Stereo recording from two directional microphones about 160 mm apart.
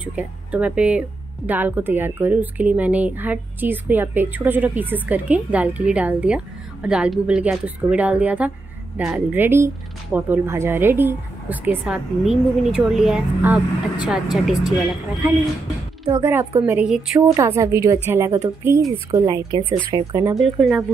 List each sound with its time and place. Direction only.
0.0 s a woman's voice: 10° right (ahead or behind)
16.6 s speech: 5° right (ahead or behind)
17.3 s speech: 20° right (ahead or behind)
20.3 s a woman's voice: centre (ahead or behind)